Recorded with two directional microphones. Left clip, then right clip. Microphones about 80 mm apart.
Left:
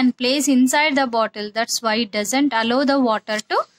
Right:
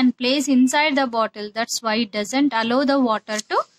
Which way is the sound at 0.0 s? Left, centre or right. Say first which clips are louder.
Left 1 dB; left.